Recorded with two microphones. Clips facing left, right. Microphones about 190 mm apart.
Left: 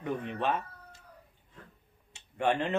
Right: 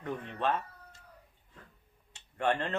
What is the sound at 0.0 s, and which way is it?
Cat, 10° left (ahead or behind).